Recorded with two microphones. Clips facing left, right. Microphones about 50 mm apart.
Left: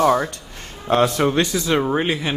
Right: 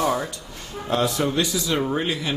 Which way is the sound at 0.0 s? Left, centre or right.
Left.